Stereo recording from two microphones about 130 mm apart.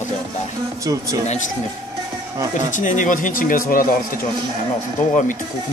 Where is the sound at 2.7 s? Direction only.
75° left (ahead or behind).